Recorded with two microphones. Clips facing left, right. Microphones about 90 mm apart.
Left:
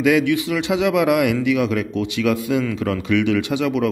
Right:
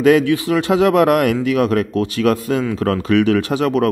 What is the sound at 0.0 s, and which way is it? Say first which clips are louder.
Speech: right 4 dB; 40° right (ahead or behind).